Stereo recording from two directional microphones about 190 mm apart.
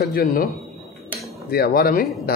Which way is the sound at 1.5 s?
55° left (ahead or behind).